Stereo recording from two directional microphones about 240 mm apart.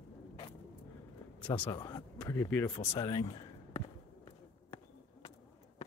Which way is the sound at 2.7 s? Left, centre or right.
Centre.